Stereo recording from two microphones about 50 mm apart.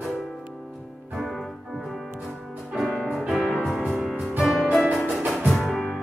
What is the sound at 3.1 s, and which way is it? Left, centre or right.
Music, centre.